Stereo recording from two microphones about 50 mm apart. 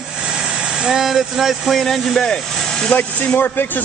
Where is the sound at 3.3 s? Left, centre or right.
Left.